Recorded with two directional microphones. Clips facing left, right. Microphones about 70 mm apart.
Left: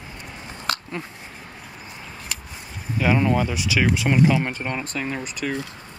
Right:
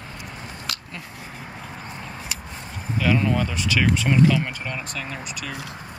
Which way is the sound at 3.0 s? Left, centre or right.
Left.